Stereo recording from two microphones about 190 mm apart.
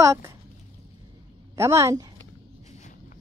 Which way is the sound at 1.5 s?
15° right (ahead or behind).